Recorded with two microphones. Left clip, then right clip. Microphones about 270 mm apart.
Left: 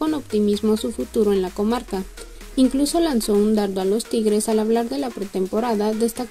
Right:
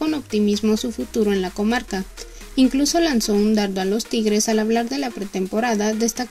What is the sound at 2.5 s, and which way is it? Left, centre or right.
Speech, right.